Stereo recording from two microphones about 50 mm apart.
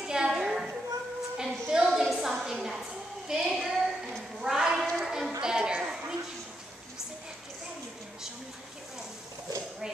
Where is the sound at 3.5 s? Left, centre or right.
Centre.